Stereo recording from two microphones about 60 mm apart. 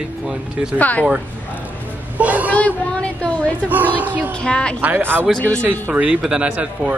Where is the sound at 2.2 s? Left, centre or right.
Right.